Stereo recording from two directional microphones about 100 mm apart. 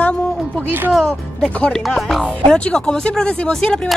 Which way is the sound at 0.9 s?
5° left (ahead or behind).